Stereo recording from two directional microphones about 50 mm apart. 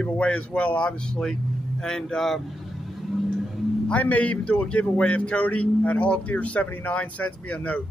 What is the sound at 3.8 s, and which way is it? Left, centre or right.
A man's voice, left.